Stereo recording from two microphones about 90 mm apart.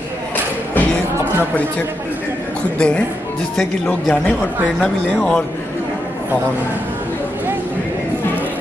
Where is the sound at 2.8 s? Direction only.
10° left (ahead or behind).